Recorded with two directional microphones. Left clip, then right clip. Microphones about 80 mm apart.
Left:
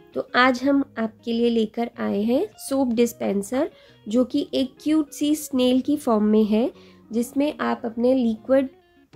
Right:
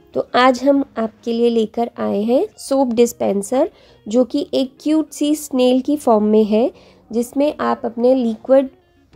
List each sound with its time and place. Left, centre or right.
0.1 s a woman's voice: right
7.4 s speech: right